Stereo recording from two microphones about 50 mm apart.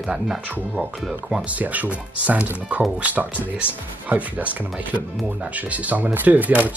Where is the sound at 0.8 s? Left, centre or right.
Right.